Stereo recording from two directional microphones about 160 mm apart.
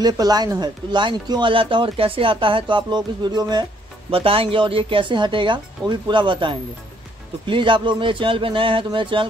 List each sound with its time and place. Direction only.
0.0 s speech: 25° right (ahead or behind)